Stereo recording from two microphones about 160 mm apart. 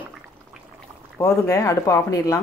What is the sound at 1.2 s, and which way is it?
Speech, 20° left (ahead or behind).